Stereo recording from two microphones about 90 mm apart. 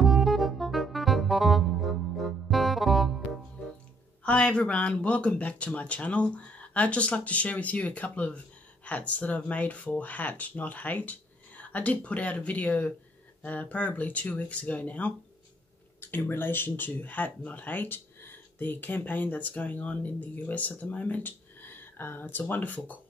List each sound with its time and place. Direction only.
0.0 s music: centre (ahead or behind)
4.2 s speech: 10° left (ahead or behind)